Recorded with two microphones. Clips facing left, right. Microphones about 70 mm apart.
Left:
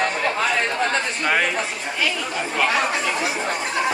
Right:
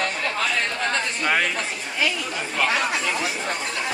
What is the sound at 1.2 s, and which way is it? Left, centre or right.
Chatter, centre.